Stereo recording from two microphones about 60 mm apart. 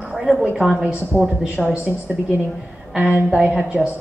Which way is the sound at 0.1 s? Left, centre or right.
Centre.